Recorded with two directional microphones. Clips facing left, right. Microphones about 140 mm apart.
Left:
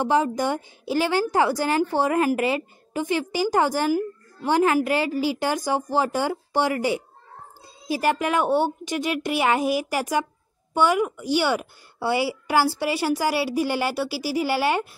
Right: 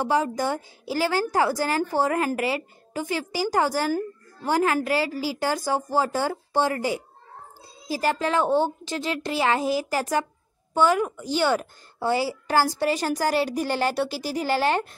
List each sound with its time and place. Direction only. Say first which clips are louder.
0.0 s a woman's voice: left 2 dB; 20° left (ahead or behind)